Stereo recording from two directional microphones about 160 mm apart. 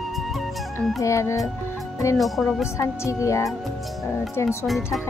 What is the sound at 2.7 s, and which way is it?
Music, 20° left (ahead or behind).